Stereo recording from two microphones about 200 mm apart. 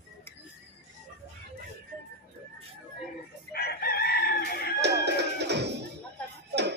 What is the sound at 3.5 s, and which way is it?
Chicken, 50° left (ahead or behind).